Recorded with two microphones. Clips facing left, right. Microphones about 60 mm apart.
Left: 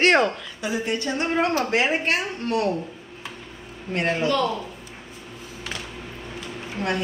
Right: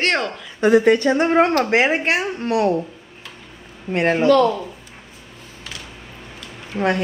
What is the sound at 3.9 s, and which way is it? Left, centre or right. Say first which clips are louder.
Speech: right 6 dB; right.